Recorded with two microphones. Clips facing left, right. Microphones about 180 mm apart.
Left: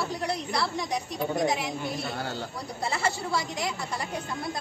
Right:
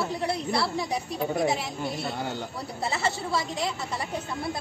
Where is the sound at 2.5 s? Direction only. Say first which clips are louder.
Right 1 dB; centre (ahead or behind).